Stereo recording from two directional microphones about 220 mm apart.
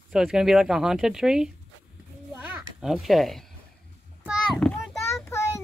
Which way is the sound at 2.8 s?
Centre (ahead or behind).